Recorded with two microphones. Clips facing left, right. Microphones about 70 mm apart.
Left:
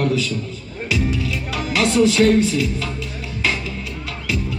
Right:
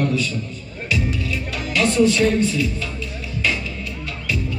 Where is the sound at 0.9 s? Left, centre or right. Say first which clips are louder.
Left 2 dB; left.